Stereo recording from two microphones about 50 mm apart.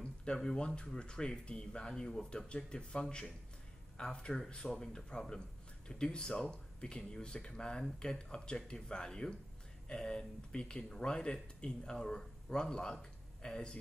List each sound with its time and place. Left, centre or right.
0.0 s speech: centre